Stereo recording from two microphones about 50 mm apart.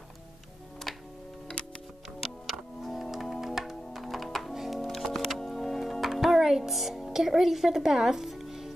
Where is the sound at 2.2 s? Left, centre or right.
Centre.